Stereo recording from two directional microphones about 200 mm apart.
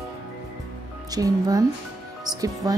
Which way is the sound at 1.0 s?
20° right (ahead or behind).